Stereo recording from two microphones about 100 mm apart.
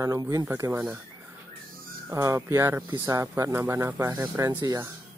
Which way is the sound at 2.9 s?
35° right (ahead or behind).